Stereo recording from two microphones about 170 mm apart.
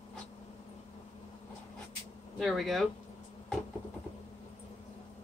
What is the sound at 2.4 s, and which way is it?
Speech, centre (ahead or behind).